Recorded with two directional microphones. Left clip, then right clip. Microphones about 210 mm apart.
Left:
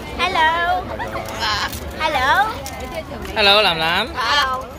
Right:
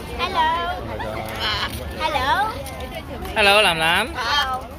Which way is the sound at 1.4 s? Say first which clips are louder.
Left 3 dB; 60° left (ahead or behind).